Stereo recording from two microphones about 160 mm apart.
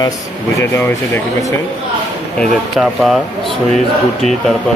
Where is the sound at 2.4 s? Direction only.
Centre (ahead or behind).